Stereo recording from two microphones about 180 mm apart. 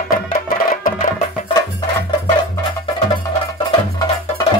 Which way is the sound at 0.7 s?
50° left (ahead or behind).